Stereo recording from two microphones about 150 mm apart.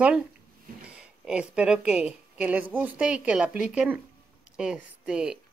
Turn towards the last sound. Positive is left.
turn(degrees=-5)  # may be behind; listen again after turning